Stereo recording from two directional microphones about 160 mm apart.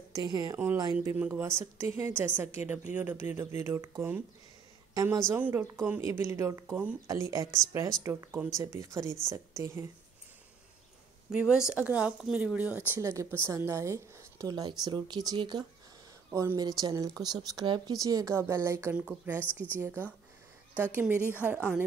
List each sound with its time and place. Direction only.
0.1 s speech: 25° right (ahead or behind)
1.0 s a woman's voice: 15° right (ahead or behind)
11.3 s speech: 5° right (ahead or behind)